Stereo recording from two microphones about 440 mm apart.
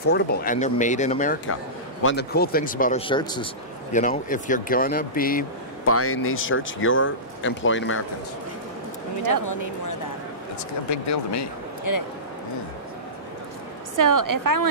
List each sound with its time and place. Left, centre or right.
0.0 s speech: left
5.9 s speech: left
9.2 s speech: left
13.9 s a woman's voice: right